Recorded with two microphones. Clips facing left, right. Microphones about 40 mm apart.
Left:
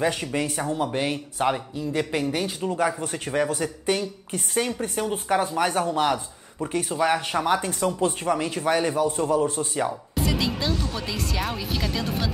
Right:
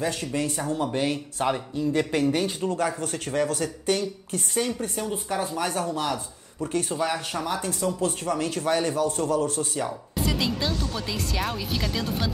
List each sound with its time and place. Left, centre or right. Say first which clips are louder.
0.0 s a man's voice: left 2 dB; left
6.8 s speech: left 3 dB; centre
7.1 s a man's voice: left 6 dB; left
8.1 s a man's voice: left 2 dB; left
10.1 s speech: right 1 dB; centre